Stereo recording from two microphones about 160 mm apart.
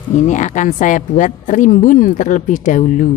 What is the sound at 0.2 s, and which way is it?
A woman's voice, 50° left (ahead or behind).